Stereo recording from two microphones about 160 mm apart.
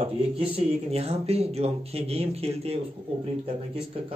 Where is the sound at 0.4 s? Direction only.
35° right (ahead or behind).